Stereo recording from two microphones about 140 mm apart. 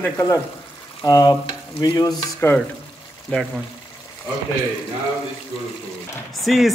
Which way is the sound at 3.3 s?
10° left (ahead or behind).